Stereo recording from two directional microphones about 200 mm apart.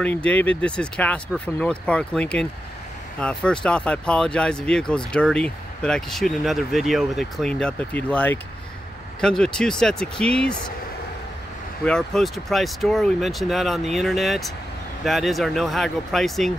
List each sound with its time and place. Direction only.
0.0 s speech: 5° left (ahead or behind)
11.8 s speech: 5° left (ahead or behind)